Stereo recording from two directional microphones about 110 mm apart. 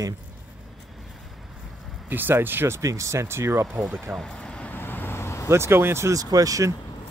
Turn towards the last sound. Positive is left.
turn(degrees=-30)  # may be behind; listen again after turning